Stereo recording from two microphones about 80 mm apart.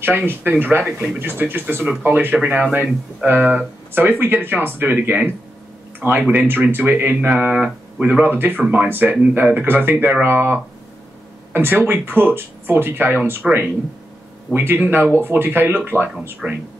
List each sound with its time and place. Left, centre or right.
0.0 s speech: right